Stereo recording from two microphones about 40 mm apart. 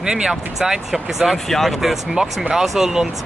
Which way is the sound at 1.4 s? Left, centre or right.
Centre.